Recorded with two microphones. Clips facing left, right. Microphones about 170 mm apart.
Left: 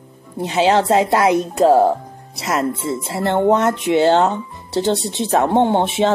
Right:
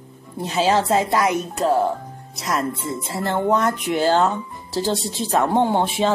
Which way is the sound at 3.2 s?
25° left (ahead or behind).